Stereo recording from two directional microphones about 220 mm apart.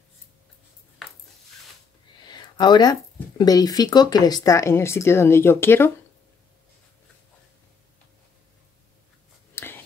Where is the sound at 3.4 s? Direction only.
15° left (ahead or behind).